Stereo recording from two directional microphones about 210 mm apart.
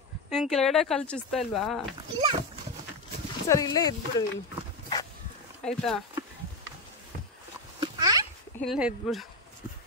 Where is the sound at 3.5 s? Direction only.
15° left (ahead or behind).